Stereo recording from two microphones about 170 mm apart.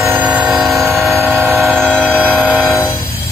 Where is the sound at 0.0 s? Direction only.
10° right (ahead or behind).